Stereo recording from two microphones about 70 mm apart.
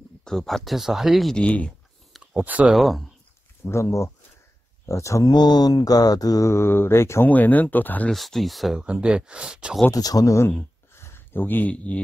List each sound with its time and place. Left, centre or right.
0.2 s speech: centre
1.3 s speech: centre
2.3 s speech: centre
2.7 s speech: centre
3.7 s speech: left
5.3 s mantra: left
6.4 s speech: left
7.2 s speech: left
8.1 s speech: centre
8.7 s speech: centre
9.9 s mantra: left
10.6 s a sound: left
11.7 s speech: centre